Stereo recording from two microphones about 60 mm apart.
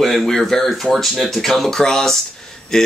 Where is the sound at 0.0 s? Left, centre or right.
Centre.